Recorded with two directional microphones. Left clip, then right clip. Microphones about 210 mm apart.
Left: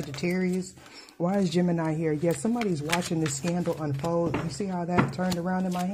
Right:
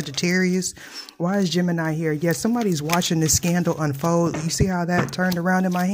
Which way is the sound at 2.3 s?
40° right (ahead or behind).